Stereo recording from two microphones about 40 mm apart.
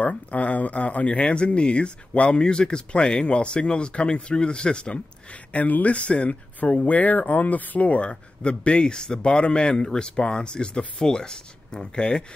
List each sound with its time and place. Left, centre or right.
0.0 s speech: left
6.9 s speech: left